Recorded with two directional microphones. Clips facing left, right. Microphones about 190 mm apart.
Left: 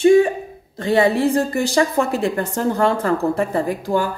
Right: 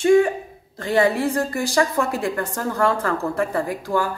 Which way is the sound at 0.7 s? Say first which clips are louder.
Left 3 dB; 20° left (ahead or behind).